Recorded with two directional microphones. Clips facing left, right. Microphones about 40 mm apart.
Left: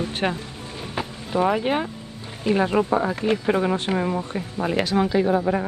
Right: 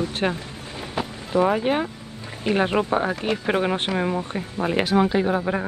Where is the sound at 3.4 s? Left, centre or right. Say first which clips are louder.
Left 1 dB; right.